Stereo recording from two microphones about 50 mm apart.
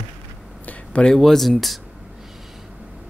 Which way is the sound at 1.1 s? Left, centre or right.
Centre.